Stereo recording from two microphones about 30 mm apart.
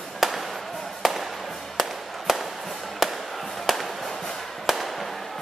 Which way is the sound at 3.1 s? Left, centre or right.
Centre.